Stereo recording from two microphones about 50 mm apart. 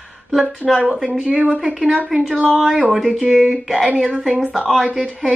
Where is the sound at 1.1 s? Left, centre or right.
Centre.